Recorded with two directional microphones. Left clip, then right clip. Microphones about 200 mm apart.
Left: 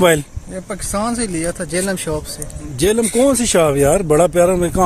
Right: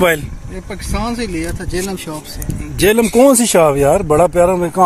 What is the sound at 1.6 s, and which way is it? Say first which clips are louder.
Speech: left 2 dB; 50° left (ahead or behind).